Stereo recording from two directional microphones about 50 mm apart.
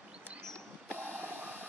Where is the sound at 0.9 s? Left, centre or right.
Right.